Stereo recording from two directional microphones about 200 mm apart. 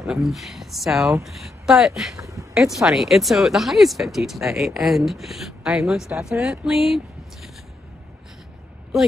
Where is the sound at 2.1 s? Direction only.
15° right (ahead or behind).